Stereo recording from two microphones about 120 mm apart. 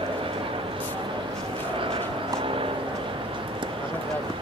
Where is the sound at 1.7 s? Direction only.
50° right (ahead or behind).